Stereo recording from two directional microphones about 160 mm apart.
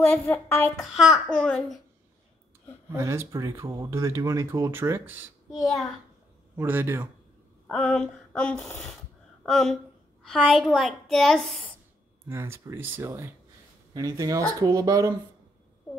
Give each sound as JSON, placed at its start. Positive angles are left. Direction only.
{"t": 0.0, "sound": "speech", "side_deg": 10}
{"t": 0.8, "sound": "a child's voice", "side_deg": 0}
{"t": 2.9, "sound": "speech", "side_deg": -15}
{"t": 6.6, "sound": "speech", "side_deg": -10}
{"t": 7.6, "sound": "a child's voice", "side_deg": 5}
{"t": 12.3, "sound": "speech", "side_deg": -15}